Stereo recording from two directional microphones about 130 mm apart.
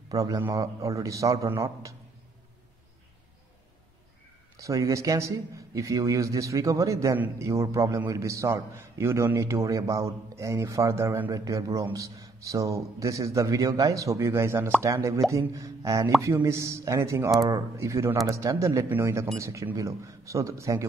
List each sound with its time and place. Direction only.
0.1 s a man's voice: 25° right (ahead or behind)
4.6 s a man's voice: 25° right (ahead or behind)